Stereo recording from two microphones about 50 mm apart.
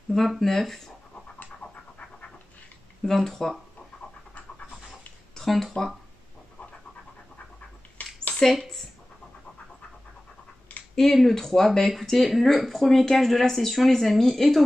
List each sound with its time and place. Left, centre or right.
0.4 s speech: centre
3.0 s speech: centre
5.3 s speech: centre
8.0 s a sound: left
8.4 s a woman's voice: centre
11.0 s speech: centre